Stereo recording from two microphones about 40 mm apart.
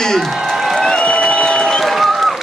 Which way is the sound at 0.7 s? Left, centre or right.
Centre.